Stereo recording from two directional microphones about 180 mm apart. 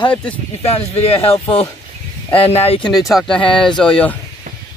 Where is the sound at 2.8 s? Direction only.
Centre (ahead or behind).